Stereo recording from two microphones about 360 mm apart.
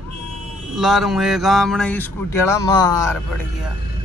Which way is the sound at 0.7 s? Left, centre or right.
Centre.